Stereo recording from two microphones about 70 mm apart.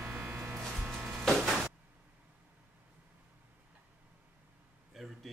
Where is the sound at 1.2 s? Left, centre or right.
Centre.